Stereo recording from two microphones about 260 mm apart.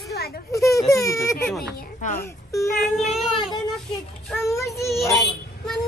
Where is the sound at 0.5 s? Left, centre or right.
Centre.